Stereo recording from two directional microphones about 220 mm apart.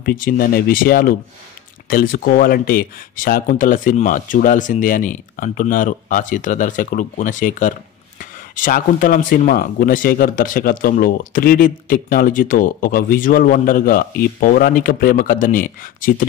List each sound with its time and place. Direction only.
0.0 s speech: 40° left (ahead or behind)